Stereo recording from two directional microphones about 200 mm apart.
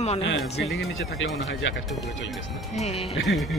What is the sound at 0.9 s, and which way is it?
Speech, 75° left (ahead or behind).